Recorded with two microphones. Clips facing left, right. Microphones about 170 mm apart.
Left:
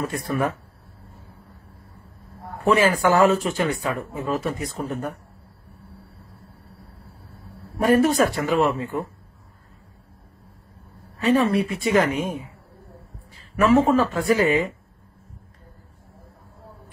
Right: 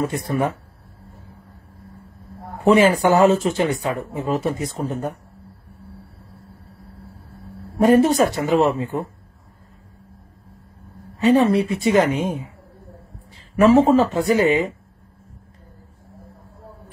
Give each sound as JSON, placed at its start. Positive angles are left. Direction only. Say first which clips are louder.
{"t": 0.0, "sound": "speech", "louder": "right 3 dB", "side_deg": -25}
{"t": 2.6, "sound": "speech", "louder": "right 4 dB", "side_deg": -25}
{"t": 4.7, "sound": "speech", "louder": "right 3 dB", "side_deg": -35}
{"t": 7.8, "sound": "speech", "louder": "right 3 dB", "side_deg": -25}
{"t": 11.1, "sound": "speech", "louder": "right 4 dB", "side_deg": -30}
{"t": 13.6, "sound": "speech", "louder": "right 4 dB", "side_deg": -30}